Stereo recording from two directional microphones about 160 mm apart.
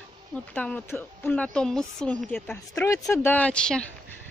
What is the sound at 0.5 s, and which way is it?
A woman's voice, 10° left (ahead or behind).